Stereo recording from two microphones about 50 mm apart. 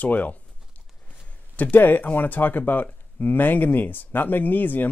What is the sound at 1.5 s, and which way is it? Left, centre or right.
Speech, left.